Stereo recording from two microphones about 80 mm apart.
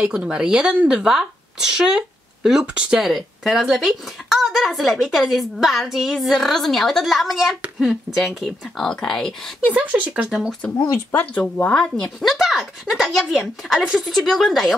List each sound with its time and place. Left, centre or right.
0.0 s speech: centre
3.1 s a woman's voice: centre
9.7 s speech: centre
10.9 s speech: left
11.7 s a woman's voice: centre